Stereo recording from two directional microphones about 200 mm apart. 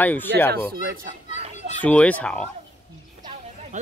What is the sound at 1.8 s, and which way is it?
Speech, 5° left (ahead or behind).